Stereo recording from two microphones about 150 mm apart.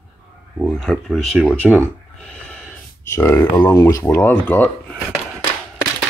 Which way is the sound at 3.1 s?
15° left (ahead or behind).